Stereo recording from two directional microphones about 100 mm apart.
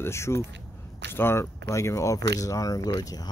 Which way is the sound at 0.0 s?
25° left (ahead or behind).